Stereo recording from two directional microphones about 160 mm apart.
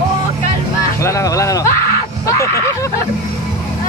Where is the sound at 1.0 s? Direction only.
20° left (ahead or behind).